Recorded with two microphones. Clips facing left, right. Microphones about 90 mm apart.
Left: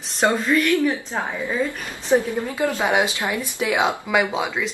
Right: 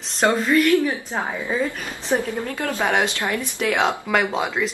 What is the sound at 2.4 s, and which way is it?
A woman's voice, 15° left (ahead or behind).